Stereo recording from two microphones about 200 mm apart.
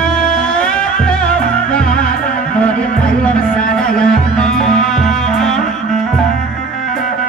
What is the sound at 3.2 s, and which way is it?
Music, 5° left (ahead or behind).